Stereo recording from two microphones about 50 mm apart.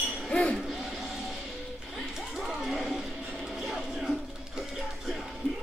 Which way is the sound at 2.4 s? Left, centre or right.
Centre.